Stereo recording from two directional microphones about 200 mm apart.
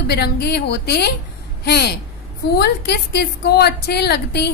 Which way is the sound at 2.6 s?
55° left (ahead or behind).